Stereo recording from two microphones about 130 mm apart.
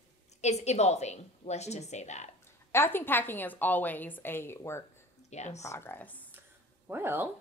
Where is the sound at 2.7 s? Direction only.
15° left (ahead or behind).